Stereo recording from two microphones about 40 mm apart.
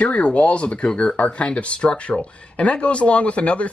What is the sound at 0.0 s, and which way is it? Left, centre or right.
Speech, left.